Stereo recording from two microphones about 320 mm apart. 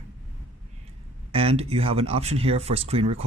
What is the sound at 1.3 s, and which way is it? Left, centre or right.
Speech, centre.